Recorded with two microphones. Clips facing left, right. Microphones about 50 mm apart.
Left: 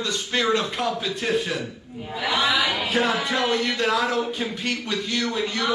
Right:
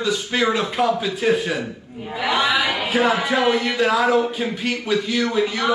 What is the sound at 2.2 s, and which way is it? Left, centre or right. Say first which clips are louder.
Speech: right 3 dB; centre.